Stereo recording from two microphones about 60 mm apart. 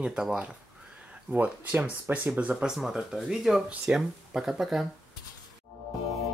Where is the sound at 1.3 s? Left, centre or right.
Right.